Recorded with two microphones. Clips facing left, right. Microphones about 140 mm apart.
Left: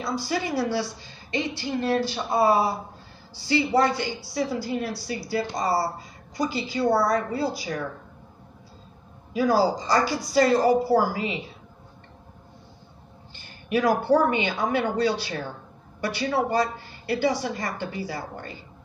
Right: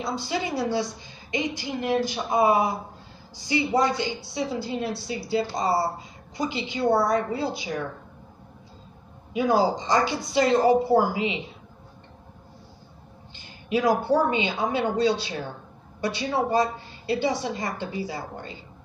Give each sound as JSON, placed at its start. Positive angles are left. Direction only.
{"t": 0.0, "sound": "a woman's voice", "side_deg": -20}
{"t": 9.3, "sound": "a woman's voice", "side_deg": -20}
{"t": 13.3, "sound": "a woman's voice", "side_deg": -20}